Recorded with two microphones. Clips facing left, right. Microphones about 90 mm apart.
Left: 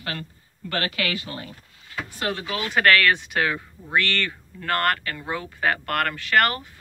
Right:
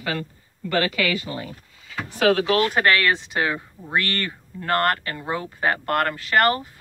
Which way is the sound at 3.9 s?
35° right (ahead or behind).